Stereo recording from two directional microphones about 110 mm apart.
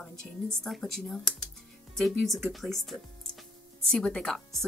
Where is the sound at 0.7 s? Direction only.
Centre (ahead or behind).